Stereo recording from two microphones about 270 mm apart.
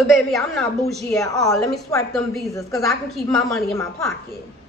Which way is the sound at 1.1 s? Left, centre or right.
Centre.